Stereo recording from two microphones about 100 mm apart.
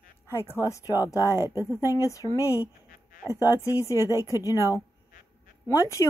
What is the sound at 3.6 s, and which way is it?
Speech, 30° left (ahead or behind).